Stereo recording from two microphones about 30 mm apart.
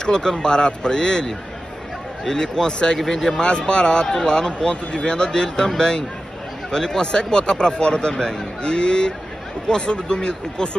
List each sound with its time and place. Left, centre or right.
0.0 s a man's voice: left
3.0 s a man's voice: centre
3.3 s a man's voice: left